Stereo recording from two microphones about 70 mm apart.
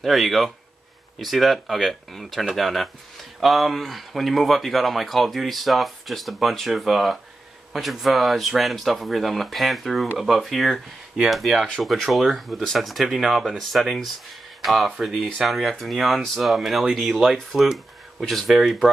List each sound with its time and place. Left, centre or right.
0.0 s speech: centre